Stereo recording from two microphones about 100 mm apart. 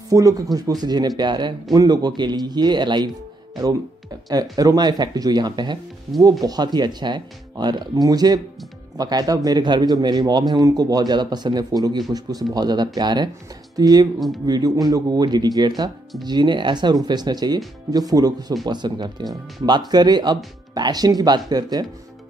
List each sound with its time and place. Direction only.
0.1 s a man's voice: 35° right (ahead or behind)
4.3 s a man's voice: 40° right (ahead or behind)